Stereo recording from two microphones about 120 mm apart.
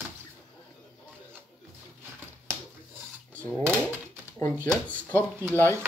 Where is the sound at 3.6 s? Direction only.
15° right (ahead or behind).